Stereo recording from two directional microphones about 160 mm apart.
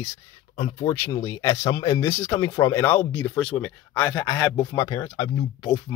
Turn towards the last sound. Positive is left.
turn(degrees=25)  # may be behind; listen again after turning